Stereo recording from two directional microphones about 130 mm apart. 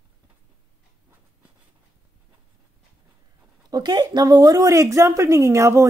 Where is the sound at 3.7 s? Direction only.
30° right (ahead or behind).